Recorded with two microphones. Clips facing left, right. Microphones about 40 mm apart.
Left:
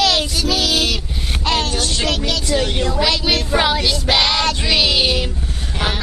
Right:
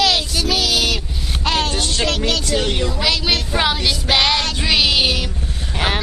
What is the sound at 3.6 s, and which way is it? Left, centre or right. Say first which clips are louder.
Child singing: left 1 dB; centre.